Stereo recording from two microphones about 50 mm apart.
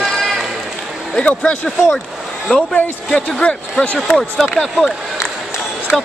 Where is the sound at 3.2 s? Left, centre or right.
Left.